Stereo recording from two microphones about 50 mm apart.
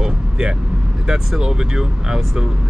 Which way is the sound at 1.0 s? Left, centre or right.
Centre.